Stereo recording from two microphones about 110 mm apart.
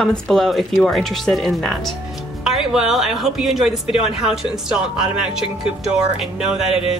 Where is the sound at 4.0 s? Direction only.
65° left (ahead or behind).